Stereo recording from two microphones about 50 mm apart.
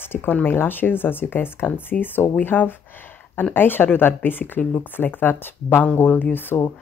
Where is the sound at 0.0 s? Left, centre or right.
Left.